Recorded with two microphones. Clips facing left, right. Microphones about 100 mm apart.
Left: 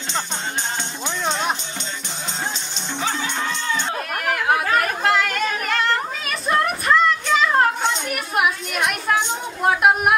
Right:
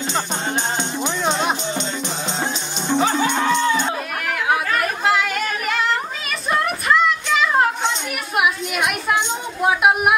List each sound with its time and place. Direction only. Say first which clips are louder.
1.0 s music: right 2 dB; 15° right (ahead or behind)
2.9 s music: right 7 dB; 50° right (ahead or behind)
4.3 s chatter: left 1 dB; centre (ahead or behind)
8.4 s a sound: right 1 dB; 5° right (ahead or behind)